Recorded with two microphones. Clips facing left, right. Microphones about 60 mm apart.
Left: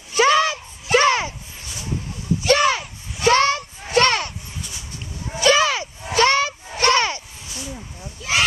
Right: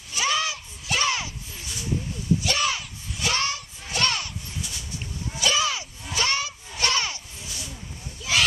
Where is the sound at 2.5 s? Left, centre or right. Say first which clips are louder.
Left 9 dB; left.